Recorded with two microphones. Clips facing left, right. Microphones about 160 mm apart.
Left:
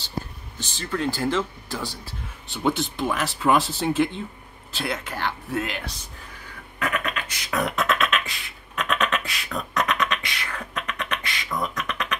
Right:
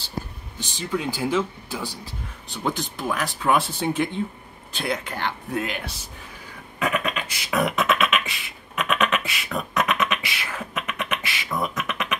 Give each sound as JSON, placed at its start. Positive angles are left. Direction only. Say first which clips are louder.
{"t": 0.6, "sound": "speech", "louder": "even", "side_deg": -10}
{"t": 2.5, "sound": "speech", "louder": "left 3 dB", "side_deg": 0}
{"t": 6.8, "sound": "beatboxing", "louder": "right 2 dB", "side_deg": -20}
{"t": 7.5, "sound": "beatboxing", "louder": "right 2 dB", "side_deg": -5}